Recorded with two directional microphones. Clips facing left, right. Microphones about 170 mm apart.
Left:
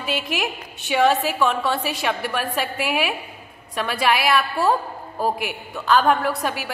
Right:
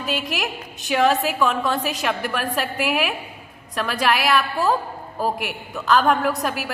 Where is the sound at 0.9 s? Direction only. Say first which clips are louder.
Even; centre (ahead or behind).